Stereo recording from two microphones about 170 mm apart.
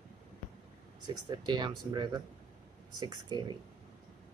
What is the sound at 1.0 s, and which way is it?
Speech, 25° right (ahead or behind).